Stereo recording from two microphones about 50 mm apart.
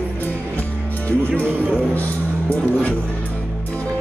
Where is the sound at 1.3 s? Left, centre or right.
Right.